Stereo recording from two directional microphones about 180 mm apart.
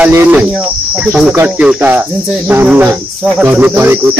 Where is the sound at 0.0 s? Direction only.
10° right (ahead or behind).